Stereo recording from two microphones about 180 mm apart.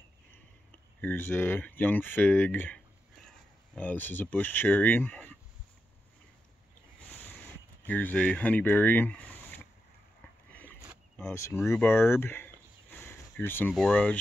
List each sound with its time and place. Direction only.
0.3 s speech: 10° left (ahead or behind)
7.2 s a sound: 10° left (ahead or behind)
11.1 s speech: 15° left (ahead or behind)